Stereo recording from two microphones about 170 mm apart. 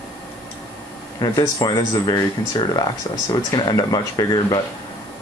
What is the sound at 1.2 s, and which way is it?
Speech, 25° left (ahead or behind).